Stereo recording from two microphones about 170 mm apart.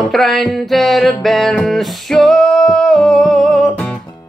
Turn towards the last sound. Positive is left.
turn(degrees=0)  # may be behind; listen again after turning